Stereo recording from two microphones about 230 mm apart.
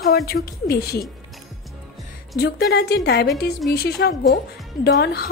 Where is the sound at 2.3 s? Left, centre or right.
Left.